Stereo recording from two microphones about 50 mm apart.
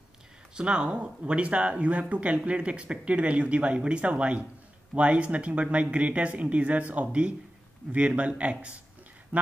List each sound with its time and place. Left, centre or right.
0.6 s speech: centre